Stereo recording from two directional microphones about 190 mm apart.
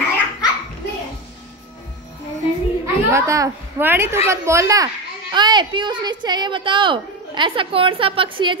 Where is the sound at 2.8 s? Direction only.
15° right (ahead or behind).